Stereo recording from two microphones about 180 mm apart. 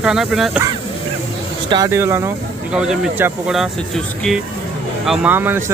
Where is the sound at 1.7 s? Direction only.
15° right (ahead or behind).